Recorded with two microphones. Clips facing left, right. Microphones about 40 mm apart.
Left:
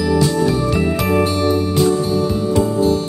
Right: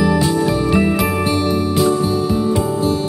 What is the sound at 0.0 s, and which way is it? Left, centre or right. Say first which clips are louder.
Music: even; centre.